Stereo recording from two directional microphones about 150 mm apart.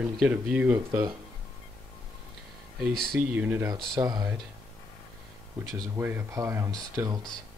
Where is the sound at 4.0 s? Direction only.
25° right (ahead or behind).